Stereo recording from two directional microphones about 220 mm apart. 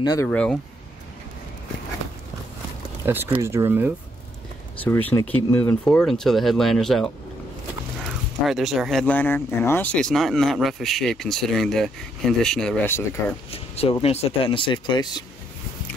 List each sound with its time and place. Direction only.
0.0 s speech: 15° left (ahead or behind)
0.3 s speech: 5° left (ahead or behind)
3.1 s speech: 10° right (ahead or behind)
4.8 s speech: 10° left (ahead or behind)
13.5 s speech: 25° left (ahead or behind)